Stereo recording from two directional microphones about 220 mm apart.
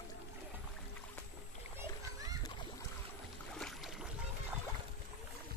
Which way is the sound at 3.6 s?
Centre (ahead or behind).